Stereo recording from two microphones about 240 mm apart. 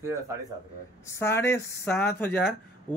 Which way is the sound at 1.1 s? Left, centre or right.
Centre.